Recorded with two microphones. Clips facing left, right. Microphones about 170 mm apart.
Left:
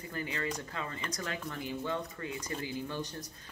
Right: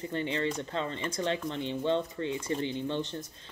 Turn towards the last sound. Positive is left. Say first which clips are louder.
# right 5 dB
turn(degrees=-25)  # may be behind; listen again after turning